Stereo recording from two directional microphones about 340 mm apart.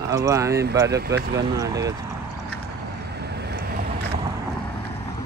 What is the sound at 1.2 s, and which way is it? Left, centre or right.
Speech, right.